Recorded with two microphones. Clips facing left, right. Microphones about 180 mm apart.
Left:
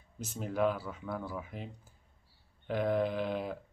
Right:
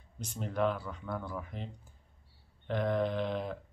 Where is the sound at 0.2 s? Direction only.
5° left (ahead or behind).